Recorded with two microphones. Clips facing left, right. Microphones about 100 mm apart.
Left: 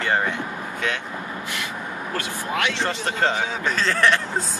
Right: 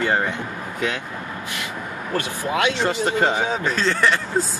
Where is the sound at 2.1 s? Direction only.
20° right (ahead or behind).